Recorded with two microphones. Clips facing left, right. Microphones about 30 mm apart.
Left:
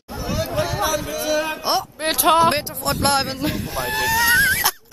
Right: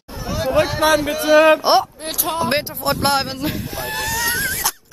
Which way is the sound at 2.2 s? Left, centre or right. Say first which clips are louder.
Left 7 dB; left.